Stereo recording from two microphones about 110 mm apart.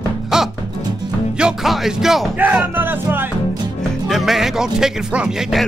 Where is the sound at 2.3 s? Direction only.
15° right (ahead or behind).